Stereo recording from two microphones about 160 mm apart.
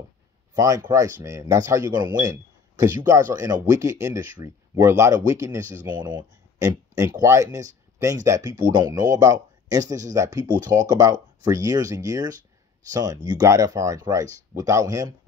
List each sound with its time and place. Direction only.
0.6 s speech: 20° right (ahead or behind)